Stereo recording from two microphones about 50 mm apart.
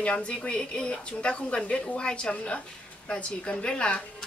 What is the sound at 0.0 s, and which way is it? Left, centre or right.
A woman's voice, left.